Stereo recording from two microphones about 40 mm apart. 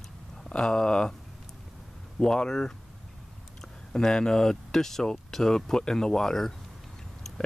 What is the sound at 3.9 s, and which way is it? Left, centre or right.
Speech, centre.